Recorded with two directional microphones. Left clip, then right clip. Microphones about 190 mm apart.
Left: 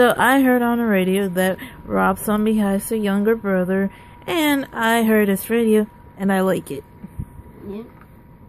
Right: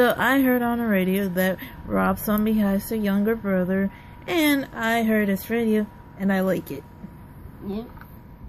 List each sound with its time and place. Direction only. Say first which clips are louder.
0.0 s speech: left 5 dB; 30° left (ahead or behind)